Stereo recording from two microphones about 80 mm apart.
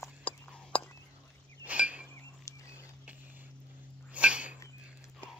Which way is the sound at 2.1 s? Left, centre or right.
Left.